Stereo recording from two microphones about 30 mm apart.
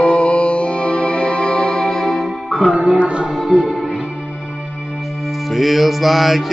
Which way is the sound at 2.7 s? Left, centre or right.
Centre.